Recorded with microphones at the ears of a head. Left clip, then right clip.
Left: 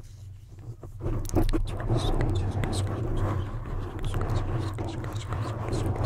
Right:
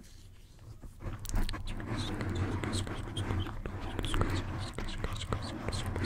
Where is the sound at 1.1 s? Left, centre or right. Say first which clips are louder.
Left 13 dB; left.